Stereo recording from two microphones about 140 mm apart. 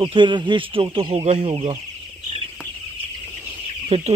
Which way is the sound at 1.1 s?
50° right (ahead or behind).